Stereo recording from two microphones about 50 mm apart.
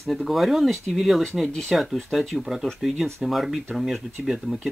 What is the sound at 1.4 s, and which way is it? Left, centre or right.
Speech, centre.